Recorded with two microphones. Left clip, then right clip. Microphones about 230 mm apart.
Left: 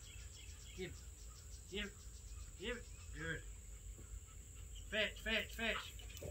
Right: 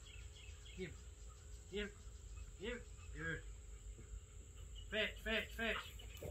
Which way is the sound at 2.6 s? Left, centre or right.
Centre.